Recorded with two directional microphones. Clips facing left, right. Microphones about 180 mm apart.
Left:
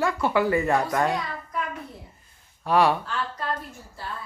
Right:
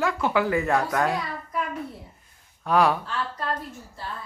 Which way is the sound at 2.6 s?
Centre (ahead or behind).